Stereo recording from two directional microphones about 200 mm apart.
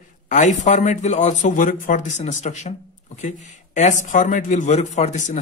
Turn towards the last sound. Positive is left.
turn(degrees=35)  # may be behind; listen again after turning